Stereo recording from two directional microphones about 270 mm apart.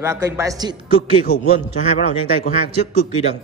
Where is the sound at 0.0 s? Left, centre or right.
Centre.